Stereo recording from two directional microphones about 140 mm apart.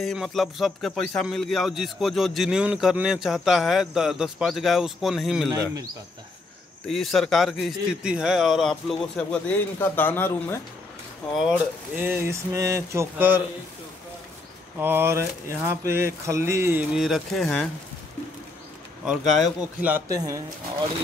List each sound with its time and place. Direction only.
0.0 s a man's voice: centre (ahead or behind)
6.9 s a man's voice: centre (ahead or behind)
11.3 s speech: 5° right (ahead or behind)
14.8 s speech: 15° right (ahead or behind)
16.9 s a man's voice: centre (ahead or behind)
19.0 s a man's voice: centre (ahead or behind)
20.1 s speech: 25° right (ahead or behind)